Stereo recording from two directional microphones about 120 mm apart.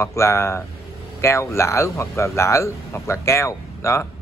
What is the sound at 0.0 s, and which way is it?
Speech, 25° left (ahead or behind).